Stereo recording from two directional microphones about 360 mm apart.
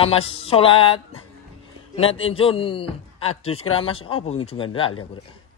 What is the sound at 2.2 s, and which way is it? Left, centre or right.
Speech, centre.